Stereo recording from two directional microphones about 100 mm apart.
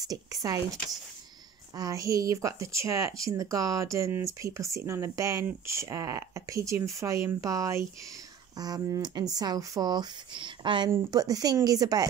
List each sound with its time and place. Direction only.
0.0 s speech: 35° right (ahead or behind)
1.8 s speech: 35° right (ahead or behind); by 10.9 s 50° right (ahead or behind)
11.1 s speech: 40° right (ahead or behind)